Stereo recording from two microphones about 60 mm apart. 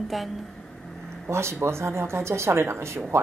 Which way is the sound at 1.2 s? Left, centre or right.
Right.